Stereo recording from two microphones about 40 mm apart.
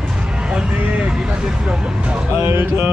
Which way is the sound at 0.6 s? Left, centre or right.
Right.